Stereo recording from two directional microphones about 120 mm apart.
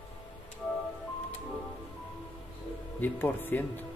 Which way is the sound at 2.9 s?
15° left (ahead or behind).